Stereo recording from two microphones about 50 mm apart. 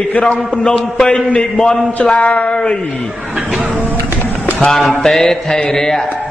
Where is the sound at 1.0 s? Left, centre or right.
Centre.